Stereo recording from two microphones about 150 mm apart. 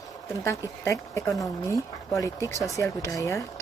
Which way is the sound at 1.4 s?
20° left (ahead or behind).